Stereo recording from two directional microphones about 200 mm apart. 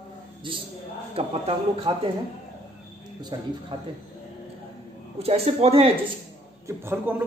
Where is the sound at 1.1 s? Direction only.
30° right (ahead or behind).